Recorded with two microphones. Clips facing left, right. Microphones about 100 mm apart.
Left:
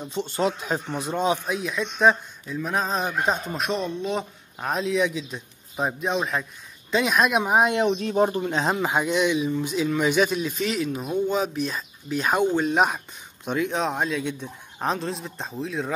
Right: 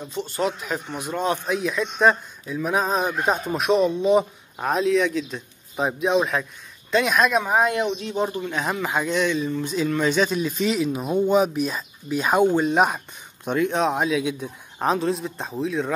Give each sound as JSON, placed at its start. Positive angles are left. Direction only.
{"t": 0.1, "sound": "speech", "side_deg": 25}
{"t": 1.5, "sound": "speech", "side_deg": 0}
{"t": 4.6, "sound": "speech", "side_deg": 0}
{"t": 7.3, "sound": "speech", "side_deg": 15}
{"t": 7.8, "sound": "speech", "side_deg": 35}